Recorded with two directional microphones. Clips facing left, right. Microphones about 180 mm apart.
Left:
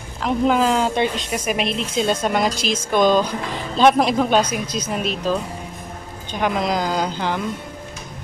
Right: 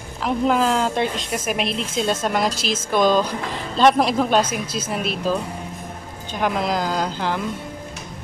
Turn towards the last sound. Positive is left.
turn(degrees=0)  # may be behind; listen again after turning